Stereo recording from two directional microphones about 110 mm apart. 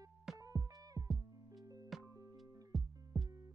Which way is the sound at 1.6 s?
35° right (ahead or behind).